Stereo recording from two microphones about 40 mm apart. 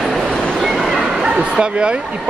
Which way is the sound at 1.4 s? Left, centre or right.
Right.